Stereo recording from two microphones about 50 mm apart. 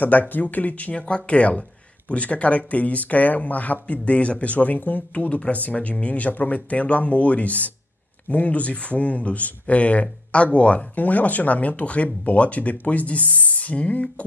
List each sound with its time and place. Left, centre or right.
0.0 s speech: left